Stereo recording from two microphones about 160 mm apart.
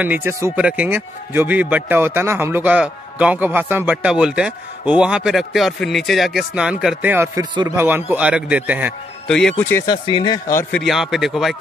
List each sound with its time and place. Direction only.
0.0 s speech: 10° right (ahead or behind)
9.3 s speech: 5° left (ahead or behind)
9.8 s speech: 30° left (ahead or behind)
10.7 s speech: centre (ahead or behind)